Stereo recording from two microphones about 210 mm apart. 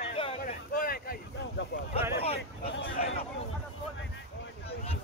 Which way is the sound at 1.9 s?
30° left (ahead or behind).